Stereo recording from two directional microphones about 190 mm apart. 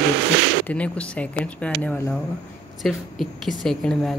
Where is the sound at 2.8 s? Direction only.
Centre (ahead or behind).